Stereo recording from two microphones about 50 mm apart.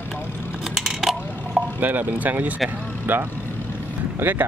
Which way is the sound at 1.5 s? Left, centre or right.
Right.